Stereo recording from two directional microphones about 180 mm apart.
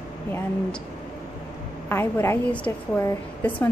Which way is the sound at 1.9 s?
10° left (ahead or behind).